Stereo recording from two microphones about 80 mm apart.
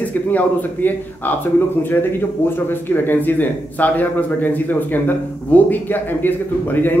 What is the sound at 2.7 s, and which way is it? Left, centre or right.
Speech, left.